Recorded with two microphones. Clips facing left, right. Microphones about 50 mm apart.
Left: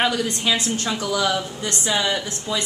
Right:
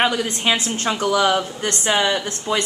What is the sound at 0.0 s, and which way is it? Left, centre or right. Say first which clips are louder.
A woman's voice: right 2 dB; right.